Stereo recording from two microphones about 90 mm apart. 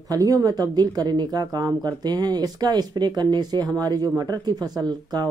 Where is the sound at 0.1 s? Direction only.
45° right (ahead or behind).